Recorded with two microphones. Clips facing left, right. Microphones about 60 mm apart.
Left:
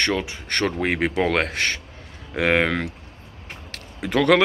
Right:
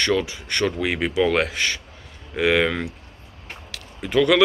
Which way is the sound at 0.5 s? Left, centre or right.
Left.